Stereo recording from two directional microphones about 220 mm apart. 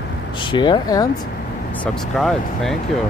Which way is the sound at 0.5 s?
20° left (ahead or behind).